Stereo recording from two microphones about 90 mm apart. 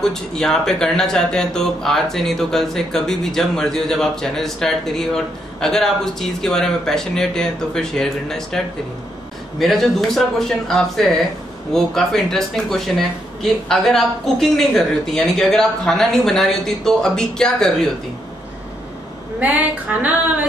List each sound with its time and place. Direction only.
0.0 s speech: 5° left (ahead or behind)
19.4 s a woman's voice: 15° right (ahead or behind)